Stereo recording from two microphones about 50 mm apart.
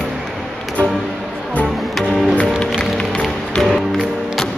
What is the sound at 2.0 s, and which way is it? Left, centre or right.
Music, centre.